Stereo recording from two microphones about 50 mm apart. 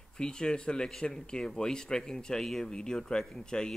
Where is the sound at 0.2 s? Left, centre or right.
Centre.